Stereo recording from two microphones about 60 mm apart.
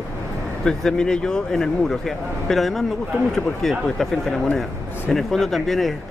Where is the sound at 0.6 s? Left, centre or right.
Centre.